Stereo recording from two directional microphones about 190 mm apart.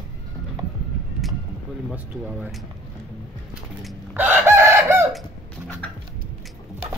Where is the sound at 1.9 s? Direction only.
5° right (ahead or behind).